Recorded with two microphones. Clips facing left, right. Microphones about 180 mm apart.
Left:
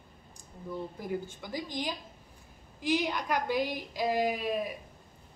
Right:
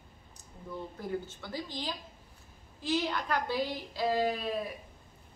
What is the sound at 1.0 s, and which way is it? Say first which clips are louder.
A woman's voice: left 1 dB; 15° left (ahead or behind).